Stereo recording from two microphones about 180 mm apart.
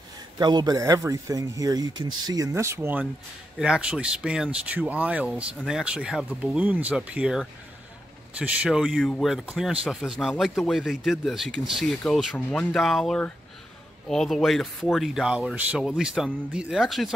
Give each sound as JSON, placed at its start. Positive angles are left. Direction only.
{"t": 0.4, "sound": "speech", "side_deg": -25}